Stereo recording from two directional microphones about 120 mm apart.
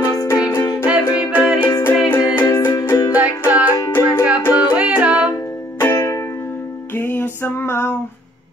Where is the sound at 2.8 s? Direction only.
25° left (ahead or behind).